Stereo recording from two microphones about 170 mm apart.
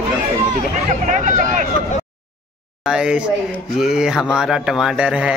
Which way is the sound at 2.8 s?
5° right (ahead or behind).